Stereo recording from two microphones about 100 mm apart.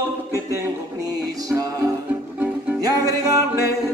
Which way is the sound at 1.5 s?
35° right (ahead or behind).